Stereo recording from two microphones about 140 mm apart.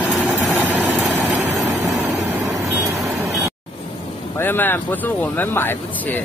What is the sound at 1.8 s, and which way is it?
Vehicle, 20° right (ahead or behind).